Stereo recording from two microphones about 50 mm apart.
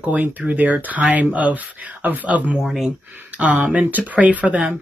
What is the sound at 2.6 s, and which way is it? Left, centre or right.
Speech, centre.